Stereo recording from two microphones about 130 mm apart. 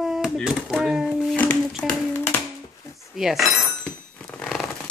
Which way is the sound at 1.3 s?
10° left (ahead or behind).